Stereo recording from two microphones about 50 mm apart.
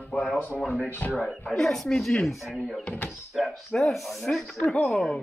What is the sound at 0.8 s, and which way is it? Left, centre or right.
Mantra, left.